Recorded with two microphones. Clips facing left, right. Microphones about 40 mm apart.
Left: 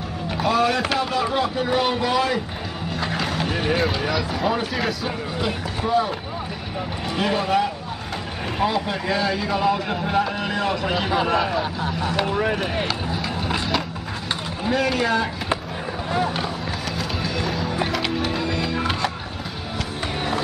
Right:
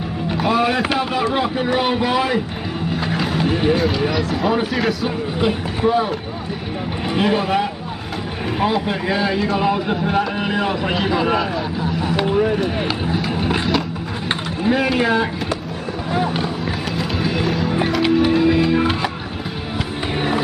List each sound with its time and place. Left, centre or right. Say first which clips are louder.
0.3 s speech: right 2 dB; centre
2.9 s vehicle: right 3 dB; centre
4.0 s speech: right 4 dB; centre
5.4 s speech: right 8 dB; centre
7.2 s speech: right 3 dB; centre
11.0 s speech: right 3 dB; centre
14.6 s speech: right 4 dB; centre
16.1 s speech: right 3 dB; centre
17.2 s music: right 7 dB; centre
17.5 s music: right 4 dB; centre
18.2 s music: right 9 dB; centre